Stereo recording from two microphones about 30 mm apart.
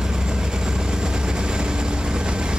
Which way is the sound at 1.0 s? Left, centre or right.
Right.